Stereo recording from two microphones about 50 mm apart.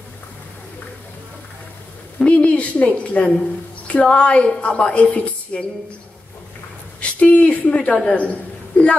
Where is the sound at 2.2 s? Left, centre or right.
Left.